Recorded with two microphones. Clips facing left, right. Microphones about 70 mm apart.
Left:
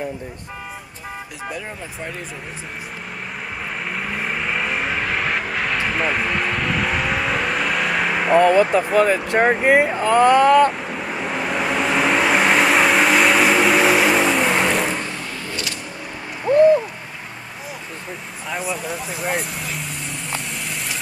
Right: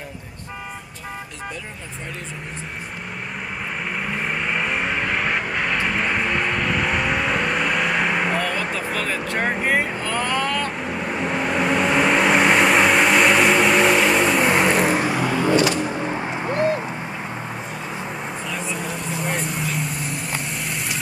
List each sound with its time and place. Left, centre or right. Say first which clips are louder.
4.0 s vehicle: even; centre
8.9 s speech: left 9 dB; centre
10.8 s vehicle: right 1 dB; centre
15.5 s vehicle: right 11 dB; right
18.5 s vehicle: left 6 dB; centre